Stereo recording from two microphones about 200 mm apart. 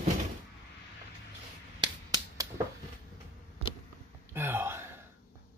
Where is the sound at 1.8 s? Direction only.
20° right (ahead or behind).